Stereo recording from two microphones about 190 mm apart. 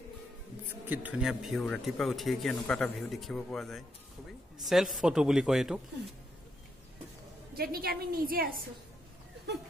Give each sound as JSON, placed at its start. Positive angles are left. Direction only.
{"t": 0.8, "sound": "speech", "side_deg": -10}
{"t": 7.5, "sound": "a woman's voice", "side_deg": -50}